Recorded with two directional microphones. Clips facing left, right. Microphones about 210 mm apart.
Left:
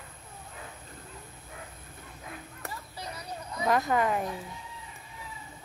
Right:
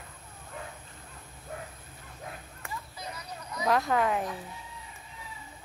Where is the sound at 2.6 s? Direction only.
30° left (ahead or behind).